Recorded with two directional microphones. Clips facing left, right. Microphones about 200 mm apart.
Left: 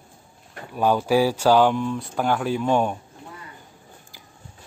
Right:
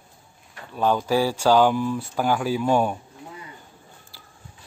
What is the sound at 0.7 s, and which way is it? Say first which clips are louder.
Speech: left 2 dB; 10° left (ahead or behind).